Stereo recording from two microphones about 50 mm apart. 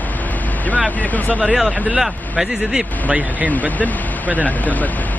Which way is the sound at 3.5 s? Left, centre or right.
Left.